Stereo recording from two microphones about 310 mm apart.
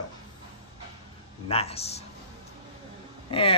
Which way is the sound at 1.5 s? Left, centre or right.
Centre.